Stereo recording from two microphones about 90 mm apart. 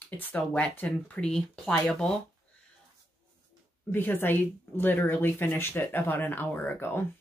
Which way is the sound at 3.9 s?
25° left (ahead or behind).